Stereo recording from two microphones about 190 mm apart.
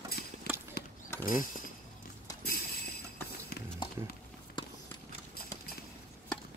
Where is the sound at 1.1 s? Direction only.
10° left (ahead or behind).